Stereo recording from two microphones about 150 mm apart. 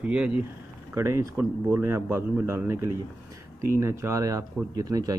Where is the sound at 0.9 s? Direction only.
20° right (ahead or behind).